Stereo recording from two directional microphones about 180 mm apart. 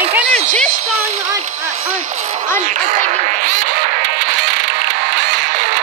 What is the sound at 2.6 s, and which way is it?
Music, 45° right (ahead or behind).